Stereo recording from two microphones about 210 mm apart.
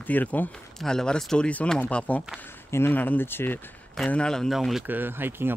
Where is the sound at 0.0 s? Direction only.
10° left (ahead or behind).